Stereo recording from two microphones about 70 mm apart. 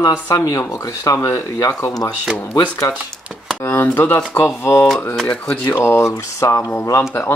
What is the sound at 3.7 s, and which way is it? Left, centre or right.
Speech, left.